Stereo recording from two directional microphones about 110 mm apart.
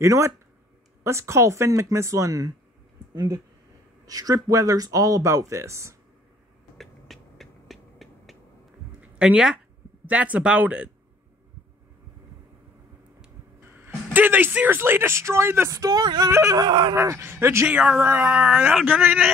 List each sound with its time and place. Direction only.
0.0 s speech: 25° right (ahead or behind)
4.0 s speech: 35° right (ahead or behind)
6.8 s a sound: centre (ahead or behind)
9.0 s speech: 10° right (ahead or behind)
13.8 s speech: 20° right (ahead or behind)
16.5 s speech: 40° right (ahead or behind)
16.9 s speech: 25° right (ahead or behind)
17.6 s speech: 10° right (ahead or behind)